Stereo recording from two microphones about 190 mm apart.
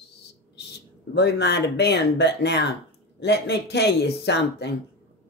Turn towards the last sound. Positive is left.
turn(degrees=60)  # may be behind; listen again after turning